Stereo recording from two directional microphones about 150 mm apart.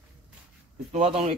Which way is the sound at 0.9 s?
45° right (ahead or behind).